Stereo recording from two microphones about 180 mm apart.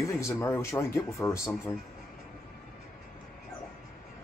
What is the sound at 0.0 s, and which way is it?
Speech, 15° left (ahead or behind).